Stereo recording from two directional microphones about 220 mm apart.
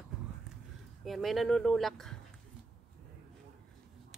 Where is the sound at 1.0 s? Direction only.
Centre (ahead or behind).